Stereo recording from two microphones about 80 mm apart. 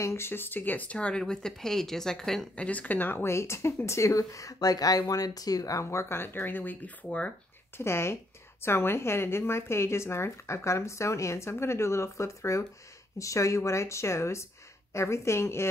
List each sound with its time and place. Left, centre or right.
0.0 s speech: left; by 2.4 s centre
2.5 s speech: centre
7.7 s speech: left